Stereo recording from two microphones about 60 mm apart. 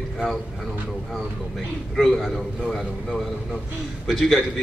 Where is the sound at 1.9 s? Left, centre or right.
Centre.